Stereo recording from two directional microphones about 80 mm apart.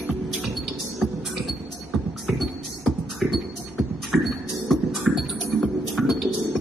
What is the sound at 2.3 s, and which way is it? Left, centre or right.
Music, centre.